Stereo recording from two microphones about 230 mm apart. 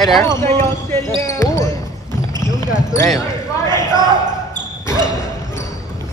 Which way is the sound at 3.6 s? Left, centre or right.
Centre.